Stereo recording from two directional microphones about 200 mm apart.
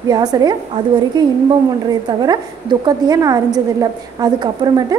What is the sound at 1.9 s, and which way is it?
A woman's voice, 20° right (ahead or behind).